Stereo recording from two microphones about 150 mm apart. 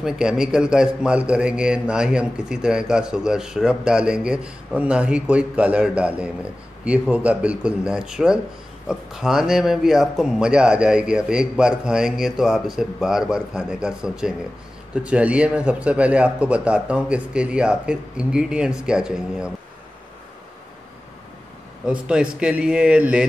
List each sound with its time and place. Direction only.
0.0 s a man's voice: 5° right (ahead or behind)
21.8 s a man's voice: 5° right (ahead or behind)